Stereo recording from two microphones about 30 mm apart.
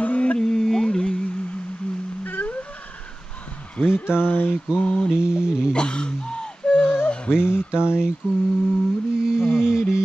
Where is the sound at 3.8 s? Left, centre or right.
Left.